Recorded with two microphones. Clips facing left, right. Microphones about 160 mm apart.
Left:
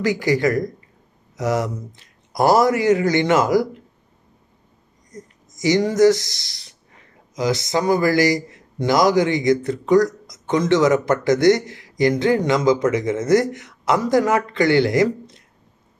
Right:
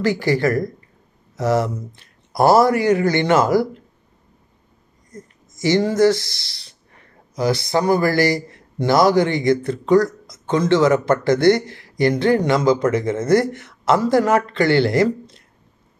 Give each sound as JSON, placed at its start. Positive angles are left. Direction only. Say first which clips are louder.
{"t": 0.0, "sound": "a man's voice", "louder": "even", "side_deg": 15}
{"t": 5.1, "sound": "a sound", "louder": "even", "side_deg": 20}
{"t": 5.9, "sound": "a man's voice", "louder": "left 1 dB", "side_deg": 20}